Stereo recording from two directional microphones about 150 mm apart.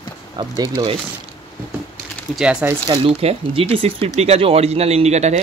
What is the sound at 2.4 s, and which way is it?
Speech, 5° right (ahead or behind).